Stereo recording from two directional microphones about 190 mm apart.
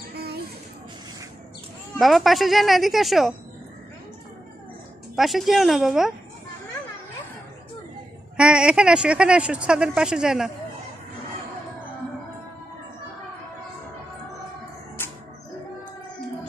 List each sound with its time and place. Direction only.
0.1 s a sound: 55° right (ahead or behind)
2.0 s speech: centre (ahead or behind)
5.1 s speech: centre (ahead or behind)
8.4 s speech: 5° right (ahead or behind)
15.0 s bird: 10° left (ahead or behind)